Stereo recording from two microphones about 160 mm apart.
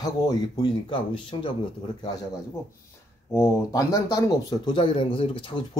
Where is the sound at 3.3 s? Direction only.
20° left (ahead or behind).